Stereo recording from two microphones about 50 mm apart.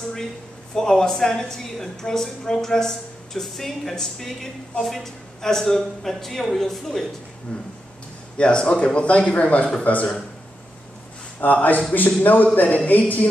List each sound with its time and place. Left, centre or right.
0.7 s a woman's voice: centre
8.4 s speech: left
11.4 s a man's voice: left